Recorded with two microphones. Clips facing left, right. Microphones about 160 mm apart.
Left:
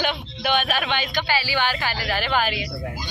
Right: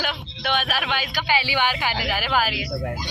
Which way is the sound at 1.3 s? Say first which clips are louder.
Right 2 dB; 15° right (ahead or behind).